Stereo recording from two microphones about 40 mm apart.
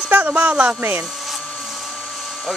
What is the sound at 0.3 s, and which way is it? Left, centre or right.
Speech, right.